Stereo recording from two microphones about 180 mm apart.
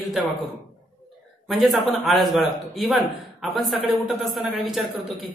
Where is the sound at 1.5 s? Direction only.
Centre (ahead or behind).